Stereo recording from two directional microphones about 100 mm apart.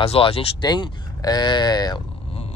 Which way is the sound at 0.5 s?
50° left (ahead or behind).